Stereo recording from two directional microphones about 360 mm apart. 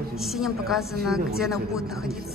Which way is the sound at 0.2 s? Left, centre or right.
Centre.